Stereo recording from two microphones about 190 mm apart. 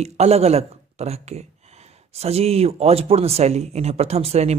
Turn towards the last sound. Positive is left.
turn(degrees=-35)  # may be behind; listen again after turning